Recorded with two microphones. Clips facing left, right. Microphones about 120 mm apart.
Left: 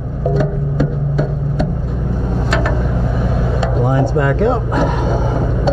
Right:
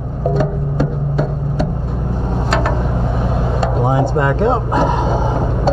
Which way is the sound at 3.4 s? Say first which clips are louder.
Right 1 dB; 5° right (ahead or behind).